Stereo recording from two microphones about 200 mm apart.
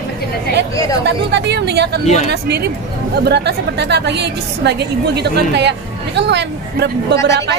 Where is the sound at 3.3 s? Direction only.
55° right (ahead or behind).